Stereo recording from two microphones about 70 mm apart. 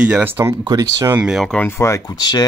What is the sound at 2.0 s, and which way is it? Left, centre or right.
Speech, left.